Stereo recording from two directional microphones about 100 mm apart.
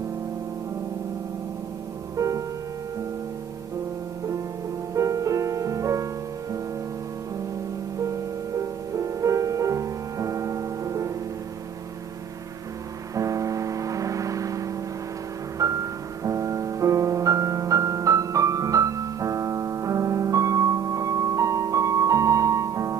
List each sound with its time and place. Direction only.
2.1 s music: 35° right (ahead or behind)
4.9 s music: 35° right (ahead or behind)
8.0 s music: 30° right (ahead or behind)
13.1 s music: 35° right (ahead or behind)